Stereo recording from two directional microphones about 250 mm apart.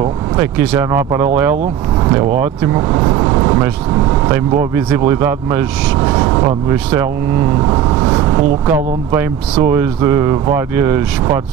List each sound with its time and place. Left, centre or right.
0.4 s speech: centre